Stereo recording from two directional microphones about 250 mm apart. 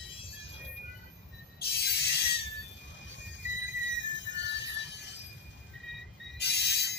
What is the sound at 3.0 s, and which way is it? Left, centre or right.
Music, left.